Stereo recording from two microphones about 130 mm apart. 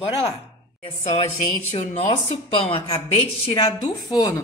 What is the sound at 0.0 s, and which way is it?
Speech, 45° left (ahead or behind).